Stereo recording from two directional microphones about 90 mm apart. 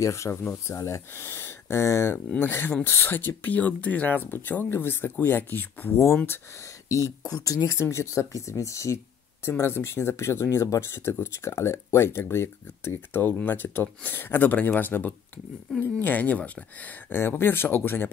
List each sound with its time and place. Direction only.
0.0 s speech: 35° left (ahead or behind)
2.2 s speech: 20° left (ahead or behind)